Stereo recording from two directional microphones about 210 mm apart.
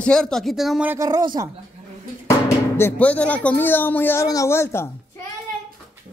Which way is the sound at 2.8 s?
10° left (ahead or behind).